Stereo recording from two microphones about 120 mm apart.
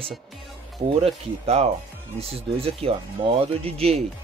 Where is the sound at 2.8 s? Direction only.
55° right (ahead or behind).